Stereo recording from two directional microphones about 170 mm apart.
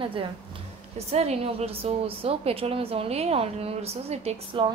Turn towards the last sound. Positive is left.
turn(degrees=-35)  # may be behind; listen again after turning